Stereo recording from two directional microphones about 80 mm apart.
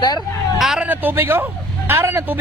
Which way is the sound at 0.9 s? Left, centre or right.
Right.